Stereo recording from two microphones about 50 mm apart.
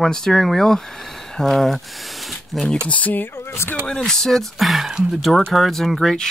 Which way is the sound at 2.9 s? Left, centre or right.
Left.